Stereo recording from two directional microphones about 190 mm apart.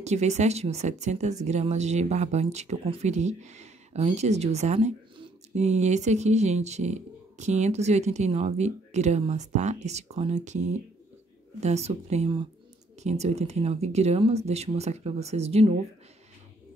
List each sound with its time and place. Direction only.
0.0 s speech: 35° right (ahead or behind)
11.6 s speech: 35° right (ahead or behind)